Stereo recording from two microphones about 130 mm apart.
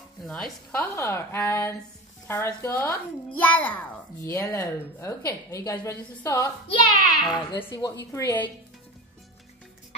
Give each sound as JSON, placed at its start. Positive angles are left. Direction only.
{"t": 0.2, "sound": "a woman's voice", "side_deg": 5}
{"t": 4.2, "sound": "a woman's voice", "side_deg": 25}